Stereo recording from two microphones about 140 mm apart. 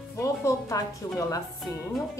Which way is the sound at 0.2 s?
20° left (ahead or behind).